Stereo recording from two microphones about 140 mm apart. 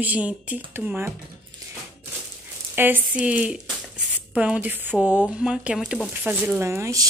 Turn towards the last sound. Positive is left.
turn(degrees=-20)  # may be behind; listen again after turning